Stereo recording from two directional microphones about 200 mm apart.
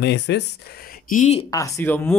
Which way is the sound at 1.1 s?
35° left (ahead or behind).